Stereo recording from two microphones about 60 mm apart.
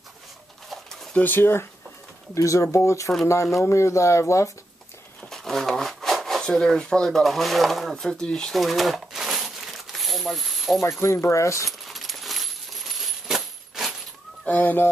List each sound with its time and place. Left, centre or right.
1.1 s speech: left
2.3 s speech: left
5.3 s speech: centre
8.5 s crumpling: centre
11.0 s speech: left
11.8 s coin: centre
14.4 s speech: left